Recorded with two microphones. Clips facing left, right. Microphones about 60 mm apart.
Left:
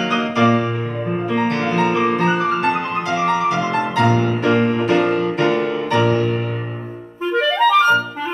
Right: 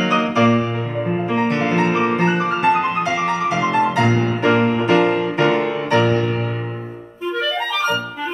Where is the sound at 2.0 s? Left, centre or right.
Centre.